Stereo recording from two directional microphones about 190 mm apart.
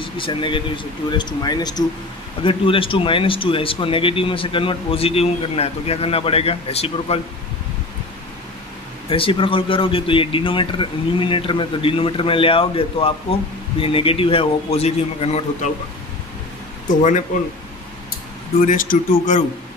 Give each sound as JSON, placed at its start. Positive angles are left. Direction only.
{"t": 0.0, "sound": "speech", "side_deg": 25}
{"t": 9.1, "sound": "speech", "side_deg": 30}
{"t": 18.7, "sound": "speech", "side_deg": 45}